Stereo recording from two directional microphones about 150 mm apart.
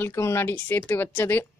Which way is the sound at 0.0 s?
15° left (ahead or behind).